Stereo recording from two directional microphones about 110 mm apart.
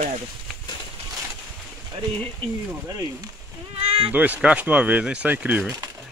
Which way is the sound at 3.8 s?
60° right (ahead or behind).